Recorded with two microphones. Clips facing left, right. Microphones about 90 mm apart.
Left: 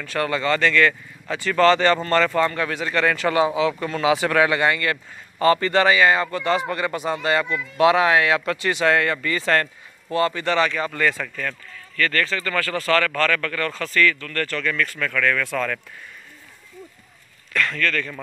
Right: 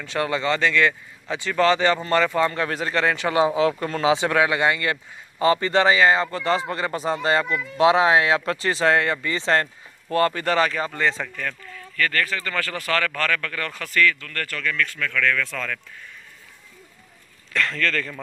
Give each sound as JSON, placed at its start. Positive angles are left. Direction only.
{"t": 0.0, "sound": "speech", "side_deg": -20}
{"t": 2.7, "sound": "a man's voice", "side_deg": -35}
{"t": 3.4, "sound": "speech", "side_deg": -40}
{"t": 4.1, "sound": "a man's voice", "side_deg": -20}
{"t": 7.7, "sound": "a man's voice", "side_deg": -20}
{"t": 10.1, "sound": "speech", "side_deg": -45}
{"t": 10.9, "sound": "a man's voice", "side_deg": -25}
{"t": 12.0, "sound": "speech", "side_deg": -10}
{"t": 14.6, "sound": "speech", "side_deg": 10}
{"t": 17.6, "sound": "speech", "side_deg": 5}